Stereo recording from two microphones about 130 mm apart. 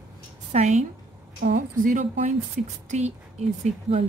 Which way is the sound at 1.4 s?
85° right.